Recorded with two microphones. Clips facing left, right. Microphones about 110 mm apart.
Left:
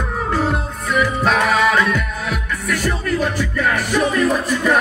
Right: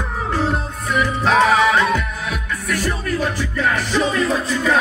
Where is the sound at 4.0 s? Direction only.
15° left (ahead or behind).